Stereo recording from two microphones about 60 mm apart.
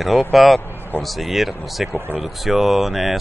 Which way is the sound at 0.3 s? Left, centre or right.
Centre.